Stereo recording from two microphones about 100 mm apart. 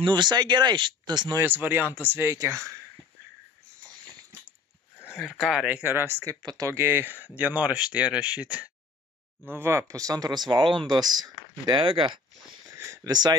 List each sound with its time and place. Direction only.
0.0 s speech: 50° right (ahead or behind)
1.4 s speech: 20° right (ahead or behind)
5.1 s speech: 5° right (ahead or behind)
5.7 s speech: 20° right (ahead or behind)
9.5 s speech: 25° right (ahead or behind); by 12.2 s 55° right (ahead or behind)
12.6 s a sound: 30° right (ahead or behind)